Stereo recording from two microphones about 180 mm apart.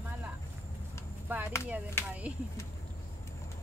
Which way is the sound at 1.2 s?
10° right (ahead or behind).